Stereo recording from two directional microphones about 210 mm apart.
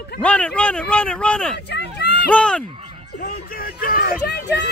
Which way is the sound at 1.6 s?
50° left (ahead or behind).